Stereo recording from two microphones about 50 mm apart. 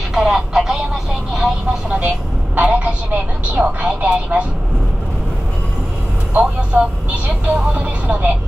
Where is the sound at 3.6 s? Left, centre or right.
Right.